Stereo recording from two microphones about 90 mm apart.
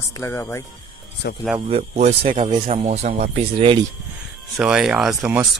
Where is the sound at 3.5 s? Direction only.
85° right.